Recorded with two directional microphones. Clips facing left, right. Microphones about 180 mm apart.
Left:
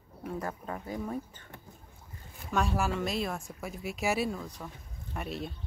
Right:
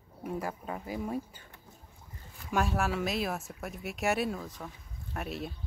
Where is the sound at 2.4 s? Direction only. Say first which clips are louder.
Even; centre (ahead or behind).